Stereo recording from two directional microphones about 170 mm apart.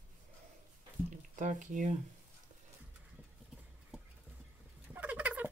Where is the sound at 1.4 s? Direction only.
50° right (ahead or behind).